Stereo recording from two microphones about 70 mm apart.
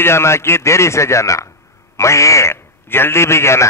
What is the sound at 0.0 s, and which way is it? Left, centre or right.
A man's voice, left.